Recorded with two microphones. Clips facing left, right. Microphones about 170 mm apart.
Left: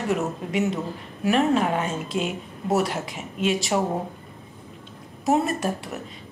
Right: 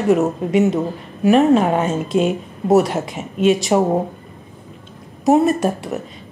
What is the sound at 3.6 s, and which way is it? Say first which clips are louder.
Speech: right 8 dB; 45° right (ahead or behind).